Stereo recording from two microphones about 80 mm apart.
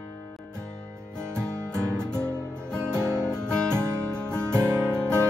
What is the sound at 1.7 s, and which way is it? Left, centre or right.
Music, centre.